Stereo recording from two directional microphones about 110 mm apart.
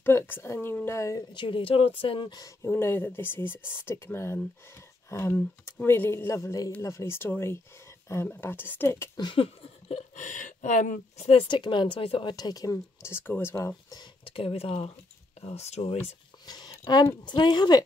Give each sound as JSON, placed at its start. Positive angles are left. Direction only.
{"t": 0.0, "sound": "speech", "side_deg": 20}
{"t": 1.3, "sound": "a woman's voice", "side_deg": 50}
{"t": 2.3, "sound": "speech", "side_deg": 30}
{"t": 9.1, "sound": "speech", "side_deg": 45}
{"t": 11.4, "sound": "a woman's voice", "side_deg": 45}
{"t": 12.4, "sound": "speech", "side_deg": 35}
{"t": 14.2, "sound": "speech", "side_deg": 55}
{"t": 15.4, "sound": "speech", "side_deg": 75}
{"t": 16.4, "sound": "speech", "side_deg": 40}